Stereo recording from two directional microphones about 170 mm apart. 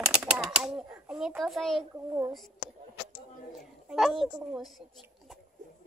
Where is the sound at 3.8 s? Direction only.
Centre (ahead or behind).